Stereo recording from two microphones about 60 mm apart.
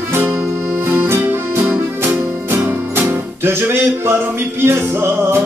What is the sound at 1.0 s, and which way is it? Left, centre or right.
Music, right.